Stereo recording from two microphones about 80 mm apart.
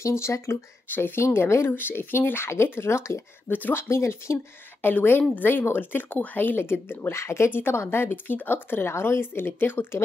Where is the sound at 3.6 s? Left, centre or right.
Left.